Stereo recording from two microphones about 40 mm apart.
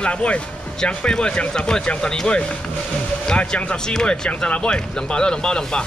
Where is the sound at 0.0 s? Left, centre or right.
Left.